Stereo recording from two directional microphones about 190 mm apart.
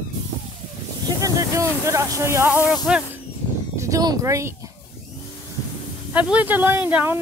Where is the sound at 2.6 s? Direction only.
20° left (ahead or behind).